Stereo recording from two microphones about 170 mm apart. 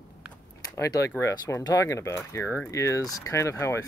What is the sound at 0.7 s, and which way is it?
Speech, 20° left (ahead or behind).